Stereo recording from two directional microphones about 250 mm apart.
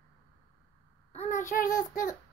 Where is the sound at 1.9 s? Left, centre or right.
Left.